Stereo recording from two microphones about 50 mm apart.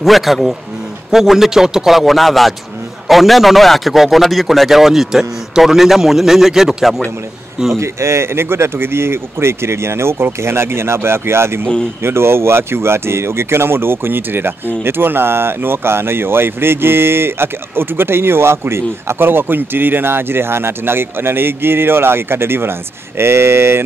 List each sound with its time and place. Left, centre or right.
0.0 s a man's voice: centre
7.7 s speech: right